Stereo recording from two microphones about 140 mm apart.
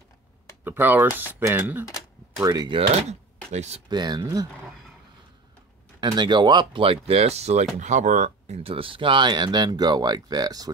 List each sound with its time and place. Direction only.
0.7 s speech: 15° right (ahead or behind)
2.4 s speech: 30° right (ahead or behind)
2.9 s speech: 50° right (ahead or behind)
3.9 s speech: 30° right (ahead or behind)
5.9 s speech: 35° right (ahead or behind)